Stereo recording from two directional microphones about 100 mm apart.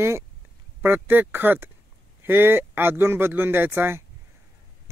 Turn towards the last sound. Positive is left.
turn(degrees=-25)  # may be behind; listen again after turning